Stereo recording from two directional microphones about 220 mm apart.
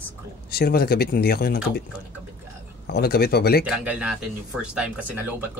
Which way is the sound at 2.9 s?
45° left (ahead or behind).